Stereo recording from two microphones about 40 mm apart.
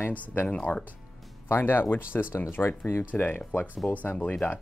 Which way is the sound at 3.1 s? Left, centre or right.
Left.